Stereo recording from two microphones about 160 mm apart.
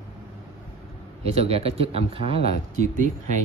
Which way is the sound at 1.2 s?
40° right (ahead or behind).